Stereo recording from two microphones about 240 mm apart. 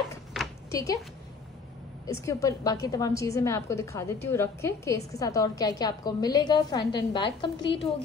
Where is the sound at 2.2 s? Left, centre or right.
Centre.